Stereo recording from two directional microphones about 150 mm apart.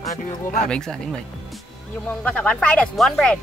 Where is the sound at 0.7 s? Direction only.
5° left (ahead or behind).